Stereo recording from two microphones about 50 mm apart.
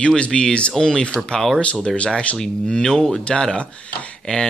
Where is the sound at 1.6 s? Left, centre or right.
Left.